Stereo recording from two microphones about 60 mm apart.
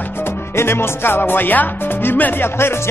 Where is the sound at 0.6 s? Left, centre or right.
Left.